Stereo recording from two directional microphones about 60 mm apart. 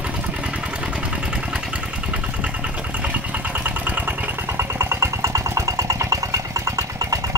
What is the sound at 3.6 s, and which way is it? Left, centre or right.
Engine, right.